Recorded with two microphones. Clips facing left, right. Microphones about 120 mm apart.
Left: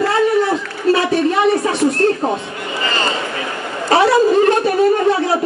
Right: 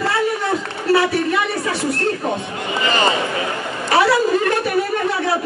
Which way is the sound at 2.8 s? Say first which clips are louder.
Right 3 dB; 20° right (ahead or behind).